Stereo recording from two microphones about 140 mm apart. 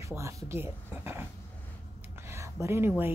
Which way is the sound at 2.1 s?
20° right (ahead or behind).